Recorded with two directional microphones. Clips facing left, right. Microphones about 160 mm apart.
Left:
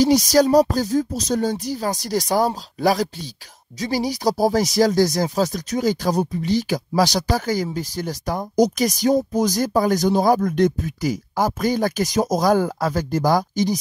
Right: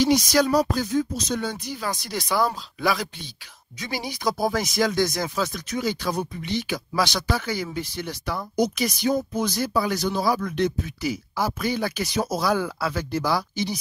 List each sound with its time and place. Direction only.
0.0 s speech: 40° left (ahead or behind)